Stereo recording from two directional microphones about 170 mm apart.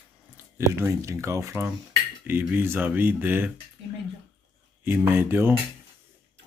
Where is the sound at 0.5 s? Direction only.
15° right (ahead or behind).